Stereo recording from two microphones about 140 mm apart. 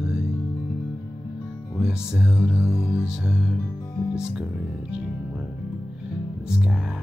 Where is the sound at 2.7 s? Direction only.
20° left (ahead or behind).